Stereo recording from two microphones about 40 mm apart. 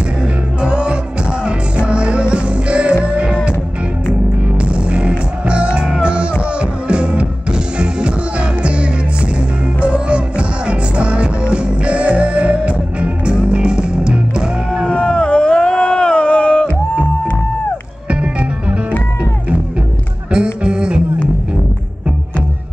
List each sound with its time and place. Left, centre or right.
0.6 s music: right
4.6 s music: right
14.9 s a sound: left
20.3 s music: right